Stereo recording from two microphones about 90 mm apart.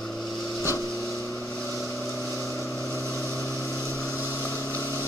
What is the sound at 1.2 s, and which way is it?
Vehicle, 20° left (ahead or behind).